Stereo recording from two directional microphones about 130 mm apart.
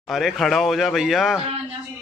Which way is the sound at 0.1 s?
5° right (ahead or behind).